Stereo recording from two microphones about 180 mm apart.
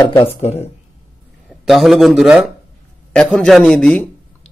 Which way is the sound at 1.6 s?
Centre (ahead or behind).